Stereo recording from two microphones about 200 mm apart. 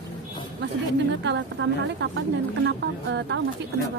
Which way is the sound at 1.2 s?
65° right (ahead or behind).